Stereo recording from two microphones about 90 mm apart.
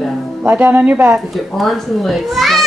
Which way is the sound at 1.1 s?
Centre (ahead or behind).